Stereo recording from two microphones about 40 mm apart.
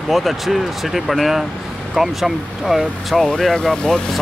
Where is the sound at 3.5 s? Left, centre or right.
Centre.